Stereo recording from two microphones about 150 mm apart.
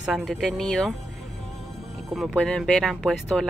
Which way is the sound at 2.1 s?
Centre (ahead or behind).